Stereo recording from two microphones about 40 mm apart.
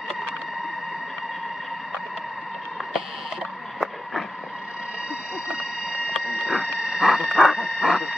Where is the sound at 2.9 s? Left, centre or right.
Centre.